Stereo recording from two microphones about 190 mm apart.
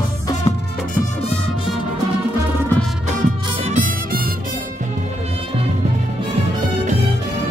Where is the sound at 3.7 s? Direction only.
40° right (ahead or behind).